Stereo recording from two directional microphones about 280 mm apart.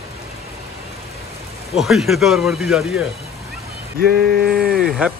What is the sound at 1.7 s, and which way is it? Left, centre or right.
Speech, centre.